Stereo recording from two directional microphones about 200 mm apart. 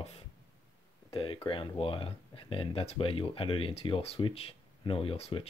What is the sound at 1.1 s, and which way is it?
Speech, 25° left (ahead or behind).